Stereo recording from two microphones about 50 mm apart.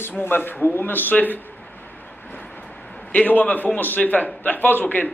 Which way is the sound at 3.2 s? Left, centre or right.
Left.